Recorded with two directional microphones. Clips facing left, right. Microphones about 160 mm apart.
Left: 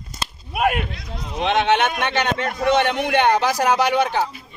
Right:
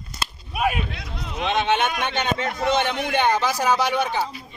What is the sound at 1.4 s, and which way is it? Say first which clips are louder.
A man's voice: left 3 dB; 70° left (ahead or behind).